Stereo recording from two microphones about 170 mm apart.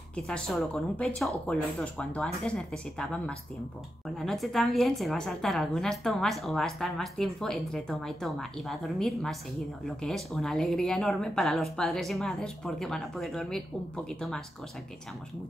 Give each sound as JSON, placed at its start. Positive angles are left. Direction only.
{"t": 0.1, "sound": "a woman's voice", "side_deg": 5}